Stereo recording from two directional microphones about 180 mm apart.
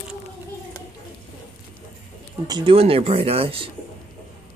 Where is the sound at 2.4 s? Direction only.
25° right (ahead or behind).